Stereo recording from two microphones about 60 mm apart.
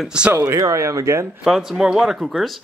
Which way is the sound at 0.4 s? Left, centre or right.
Right.